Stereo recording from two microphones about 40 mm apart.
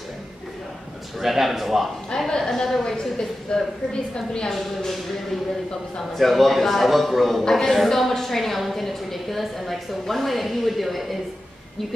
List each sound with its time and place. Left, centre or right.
1.2 s a woman's voice: centre
2.1 s a woman's voice: centre
4.5 s a woman's voice: centre
7.4 s a woman's voice: centre
7.7 s a woman's voice: centre